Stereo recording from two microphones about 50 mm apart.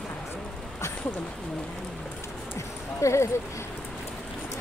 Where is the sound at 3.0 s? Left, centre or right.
Left.